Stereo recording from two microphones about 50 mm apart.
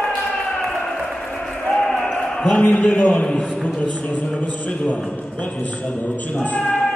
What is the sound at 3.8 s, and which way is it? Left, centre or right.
Speech, left.